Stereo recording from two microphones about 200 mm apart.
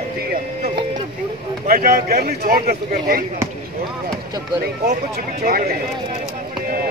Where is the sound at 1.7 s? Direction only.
50° right (ahead or behind).